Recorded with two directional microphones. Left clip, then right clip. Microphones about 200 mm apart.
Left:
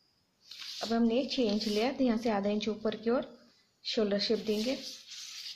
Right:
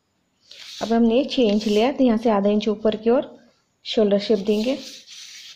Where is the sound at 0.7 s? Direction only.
30° right (ahead or behind).